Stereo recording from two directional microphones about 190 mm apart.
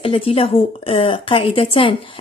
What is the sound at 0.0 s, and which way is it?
A woman's voice, 30° left (ahead or behind).